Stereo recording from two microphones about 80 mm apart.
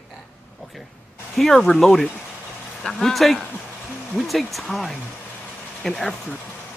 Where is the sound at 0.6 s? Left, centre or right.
Centre.